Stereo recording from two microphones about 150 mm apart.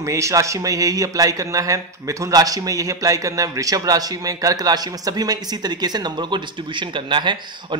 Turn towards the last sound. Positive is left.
turn(degrees=-30)  # may be behind; listen again after turning